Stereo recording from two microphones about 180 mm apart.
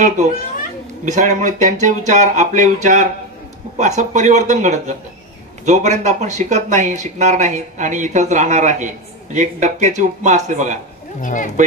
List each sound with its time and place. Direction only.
1.0 s speech: 40° right (ahead or behind)
11.1 s speech: 45° left (ahead or behind)